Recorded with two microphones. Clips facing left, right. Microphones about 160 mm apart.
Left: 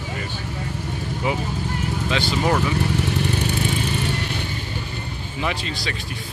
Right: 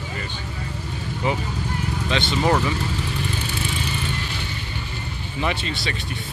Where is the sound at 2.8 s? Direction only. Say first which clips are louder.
Left 5 dB; 65° left (ahead or behind).